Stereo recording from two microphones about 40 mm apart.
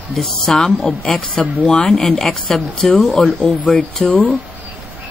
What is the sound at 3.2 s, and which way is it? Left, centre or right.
Speech, left.